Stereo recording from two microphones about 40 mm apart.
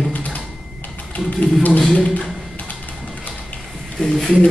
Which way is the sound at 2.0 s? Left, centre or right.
Left.